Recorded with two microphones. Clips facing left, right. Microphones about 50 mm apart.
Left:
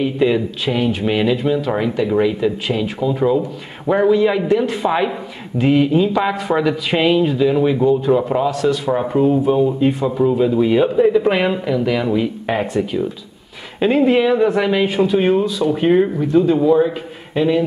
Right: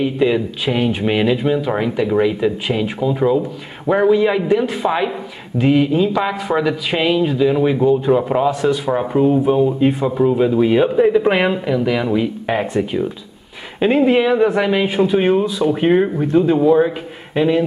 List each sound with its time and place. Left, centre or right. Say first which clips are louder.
0.0 s a man's voice: even; centre
9.0 s a man's voice: right 1 dB; centre
13.7 s speech: even; centre